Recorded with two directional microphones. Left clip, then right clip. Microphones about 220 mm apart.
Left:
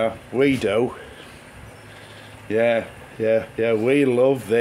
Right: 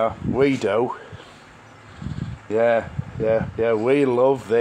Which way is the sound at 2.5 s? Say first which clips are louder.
Right 1 dB; 5° left (ahead or behind).